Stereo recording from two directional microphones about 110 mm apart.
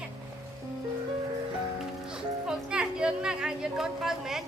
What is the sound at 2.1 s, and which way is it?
Music, 5° right (ahead or behind).